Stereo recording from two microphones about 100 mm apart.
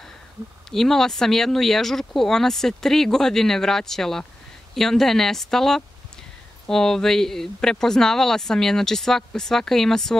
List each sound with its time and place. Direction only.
0.7 s speech: 5° left (ahead or behind)